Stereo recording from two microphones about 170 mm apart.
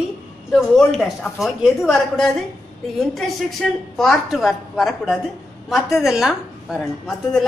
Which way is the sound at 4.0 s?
Centre (ahead or behind).